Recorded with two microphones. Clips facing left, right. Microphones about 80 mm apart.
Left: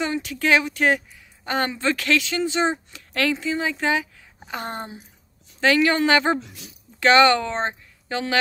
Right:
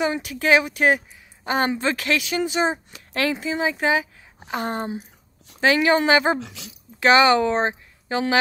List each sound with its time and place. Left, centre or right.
0.0 s a woman's voice: centre
6.4 s speech: right
7.0 s a woman's voice: centre